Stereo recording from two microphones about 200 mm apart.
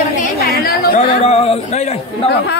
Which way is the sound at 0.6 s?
50° left (ahead or behind).